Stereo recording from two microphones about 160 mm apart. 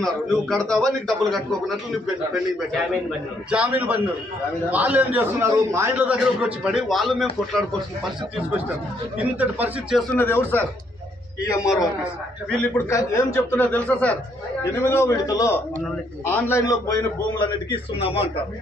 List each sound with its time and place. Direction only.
0.0 s a man's voice: centre (ahead or behind)
3.4 s a man's voice: 10° right (ahead or behind)
9.4 s a man's voice: 5° right (ahead or behind)
10.1 s a man's voice: 10° left (ahead or behind); by 17.7 s 30° left (ahead or behind)